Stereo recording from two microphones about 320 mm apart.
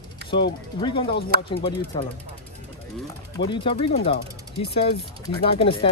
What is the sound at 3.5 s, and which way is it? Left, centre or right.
Speech, centre.